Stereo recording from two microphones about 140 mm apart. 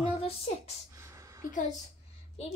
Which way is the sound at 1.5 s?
60° left (ahead or behind).